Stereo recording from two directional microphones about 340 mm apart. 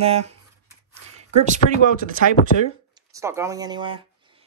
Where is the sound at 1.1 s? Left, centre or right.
Centre.